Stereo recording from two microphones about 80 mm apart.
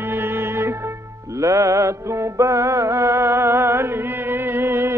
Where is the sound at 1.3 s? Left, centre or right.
Right.